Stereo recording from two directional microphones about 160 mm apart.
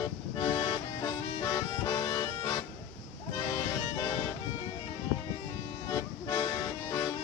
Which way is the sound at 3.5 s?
25° left (ahead or behind).